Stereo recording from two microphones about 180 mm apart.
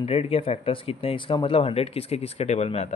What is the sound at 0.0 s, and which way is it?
Speech, 35° left (ahead or behind).